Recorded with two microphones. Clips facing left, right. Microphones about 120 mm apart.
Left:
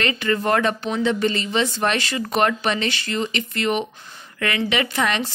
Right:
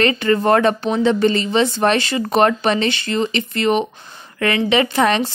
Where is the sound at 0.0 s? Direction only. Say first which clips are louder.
Right 6 dB; 35° right (ahead or behind).